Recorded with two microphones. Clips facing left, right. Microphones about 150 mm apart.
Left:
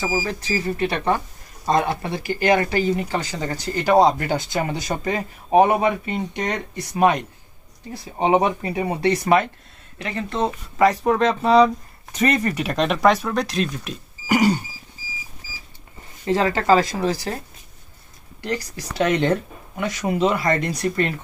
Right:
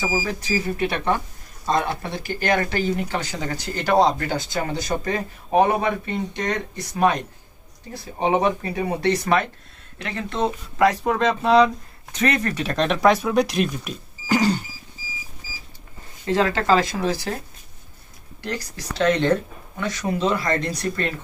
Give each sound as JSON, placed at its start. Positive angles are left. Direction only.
{"t": 0.0, "sound": "a man's voice", "side_deg": 0}
{"t": 9.9, "sound": "speech", "side_deg": 5}
{"t": 14.2, "sound": "a sound", "side_deg": 10}
{"t": 16.3, "sound": "speech", "side_deg": 5}
{"t": 18.4, "sound": "speech", "side_deg": 5}